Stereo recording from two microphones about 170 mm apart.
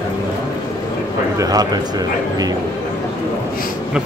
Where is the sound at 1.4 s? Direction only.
20° right (ahead or behind).